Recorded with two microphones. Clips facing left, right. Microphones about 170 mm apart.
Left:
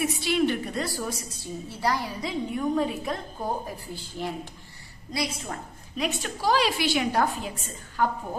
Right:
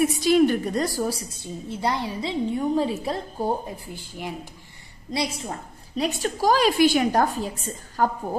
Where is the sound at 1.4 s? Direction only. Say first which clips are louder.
Right 2 dB; 20° right (ahead or behind).